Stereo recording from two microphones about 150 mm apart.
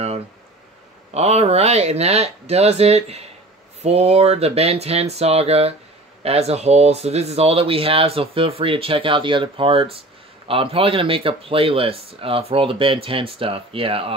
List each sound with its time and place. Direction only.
1.1 s speech: 45° right (ahead or behind)